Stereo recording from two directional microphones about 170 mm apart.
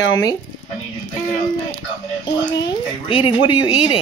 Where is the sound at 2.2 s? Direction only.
25° left (ahead or behind).